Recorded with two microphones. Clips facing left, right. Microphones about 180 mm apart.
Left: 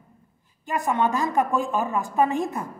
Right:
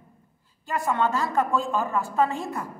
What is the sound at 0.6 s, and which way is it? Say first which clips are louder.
A woman's voice: left 1 dB; 15° left (ahead or behind).